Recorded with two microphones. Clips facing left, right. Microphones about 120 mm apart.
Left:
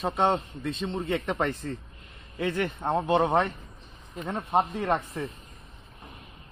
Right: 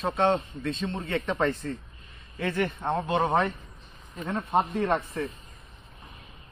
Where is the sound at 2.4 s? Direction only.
15° left (ahead or behind).